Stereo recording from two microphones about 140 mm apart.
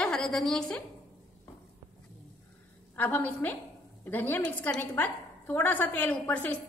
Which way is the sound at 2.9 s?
15° left (ahead or behind).